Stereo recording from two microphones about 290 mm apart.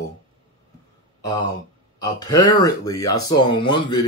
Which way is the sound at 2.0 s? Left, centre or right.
Centre.